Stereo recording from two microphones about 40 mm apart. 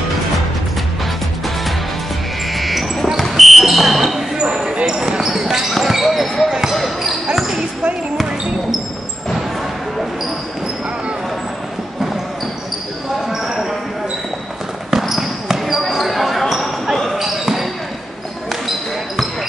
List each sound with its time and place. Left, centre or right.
2.5 s music: centre
3.2 s basketball bounce: centre
4.4 s a sound: centre
4.8 s speech: centre
6.7 s basketball bounce: centre
14.9 s basketball bounce: centre
17.2 s basketball bounce: centre